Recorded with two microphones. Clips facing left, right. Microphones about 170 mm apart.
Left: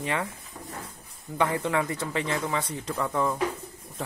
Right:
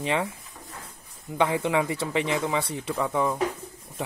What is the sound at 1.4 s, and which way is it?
Speech, 15° right (ahead or behind).